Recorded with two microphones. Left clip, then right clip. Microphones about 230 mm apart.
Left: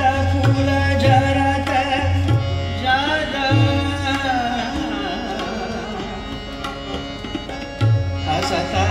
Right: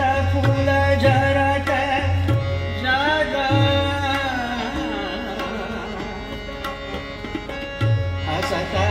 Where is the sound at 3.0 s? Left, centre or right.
Left.